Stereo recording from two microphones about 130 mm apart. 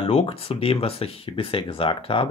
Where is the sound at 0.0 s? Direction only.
45° left (ahead or behind).